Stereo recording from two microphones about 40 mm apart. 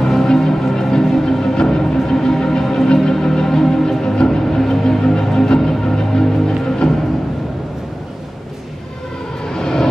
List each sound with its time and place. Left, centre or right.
0.0 s music: centre
9.5 s vehicle: centre